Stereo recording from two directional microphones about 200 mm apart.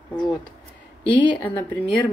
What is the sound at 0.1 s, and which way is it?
Speech, 20° left (ahead or behind).